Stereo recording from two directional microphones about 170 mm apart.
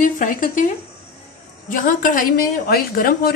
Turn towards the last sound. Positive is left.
turn(degrees=60)  # may be behind; listen again after turning